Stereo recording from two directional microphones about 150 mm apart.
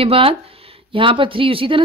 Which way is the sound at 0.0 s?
40° right (ahead or behind).